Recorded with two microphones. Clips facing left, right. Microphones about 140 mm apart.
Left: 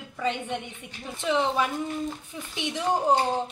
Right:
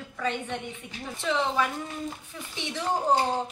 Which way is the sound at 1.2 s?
15° left (ahead or behind).